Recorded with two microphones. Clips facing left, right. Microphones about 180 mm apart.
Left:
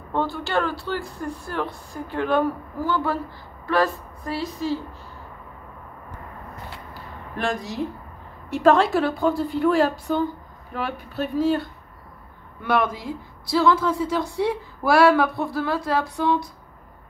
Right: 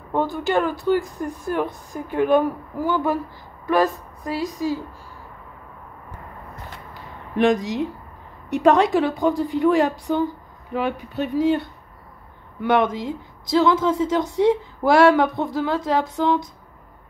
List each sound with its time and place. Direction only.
0.1 s speech: 15° right (ahead or behind)
6.9 s a sound: 20° right (ahead or behind)
8.5 s speech: 20° right (ahead or behind)
12.6 s speech: 20° right (ahead or behind)